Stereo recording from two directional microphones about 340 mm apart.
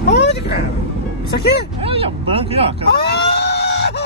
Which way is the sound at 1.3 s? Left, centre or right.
Left.